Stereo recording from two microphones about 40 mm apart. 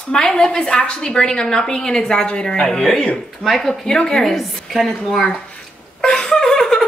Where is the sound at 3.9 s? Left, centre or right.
Centre.